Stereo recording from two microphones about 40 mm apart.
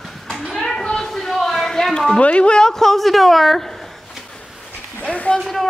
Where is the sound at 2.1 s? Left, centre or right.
Left.